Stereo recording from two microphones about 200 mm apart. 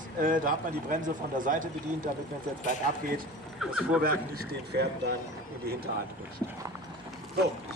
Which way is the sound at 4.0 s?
50° right (ahead or behind).